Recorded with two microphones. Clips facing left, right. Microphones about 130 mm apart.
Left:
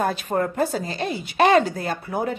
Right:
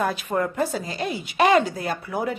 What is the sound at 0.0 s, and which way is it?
A woman's voice, 35° left (ahead or behind).